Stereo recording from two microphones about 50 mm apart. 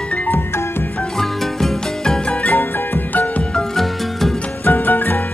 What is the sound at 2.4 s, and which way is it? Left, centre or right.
Music, left.